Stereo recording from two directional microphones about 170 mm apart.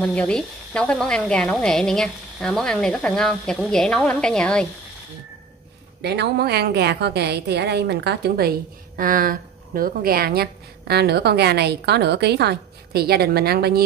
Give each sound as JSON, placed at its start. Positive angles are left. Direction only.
{"t": 0.0, "sound": "speech", "side_deg": 5}
{"t": 6.0, "sound": "a woman's voice", "side_deg": -80}